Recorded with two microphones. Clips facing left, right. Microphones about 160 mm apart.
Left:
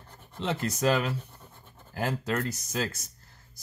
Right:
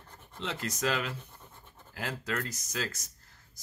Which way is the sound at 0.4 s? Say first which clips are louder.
Left 5 dB; 30° left (ahead or behind).